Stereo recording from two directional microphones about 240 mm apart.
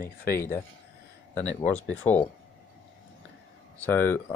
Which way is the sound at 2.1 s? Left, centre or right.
Centre.